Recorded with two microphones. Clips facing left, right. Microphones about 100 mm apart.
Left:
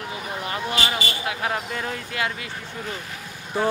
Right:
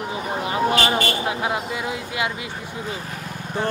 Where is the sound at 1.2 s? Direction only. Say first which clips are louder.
Right 3 dB; 25° right (ahead or behind).